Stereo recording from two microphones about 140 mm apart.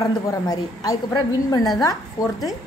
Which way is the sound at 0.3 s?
25° left (ahead or behind).